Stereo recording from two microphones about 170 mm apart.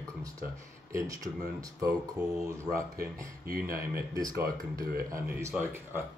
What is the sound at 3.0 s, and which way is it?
Speech, 60° right (ahead or behind).